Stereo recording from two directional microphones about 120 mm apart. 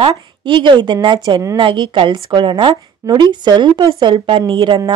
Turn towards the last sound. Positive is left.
turn(degrees=-40)  # may be behind; listen again after turning